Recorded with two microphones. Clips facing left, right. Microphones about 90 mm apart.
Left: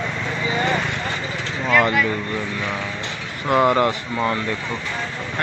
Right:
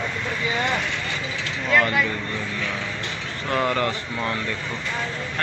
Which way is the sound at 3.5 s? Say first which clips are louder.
Left 6 dB; 20° left (ahead or behind).